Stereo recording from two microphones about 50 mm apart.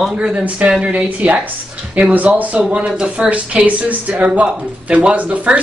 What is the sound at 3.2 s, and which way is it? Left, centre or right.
Speech, centre.